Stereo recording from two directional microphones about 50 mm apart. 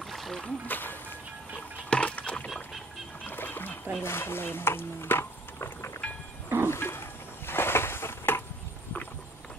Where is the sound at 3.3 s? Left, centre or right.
Left.